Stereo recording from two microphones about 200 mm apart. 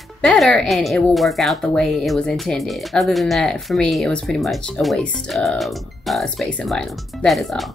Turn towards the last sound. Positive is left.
turn(degrees=0)  # may be behind; listen again after turning